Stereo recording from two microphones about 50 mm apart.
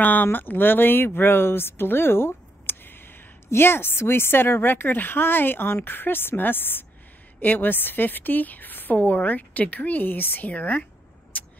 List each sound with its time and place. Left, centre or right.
0.0 s a woman's voice: left